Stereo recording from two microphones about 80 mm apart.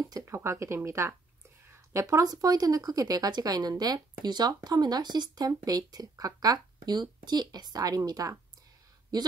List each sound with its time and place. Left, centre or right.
0.2 s speech: right